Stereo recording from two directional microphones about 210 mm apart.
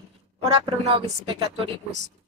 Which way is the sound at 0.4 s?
25° right (ahead or behind).